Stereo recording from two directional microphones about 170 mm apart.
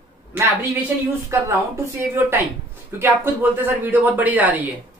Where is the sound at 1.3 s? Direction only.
15° right (ahead or behind).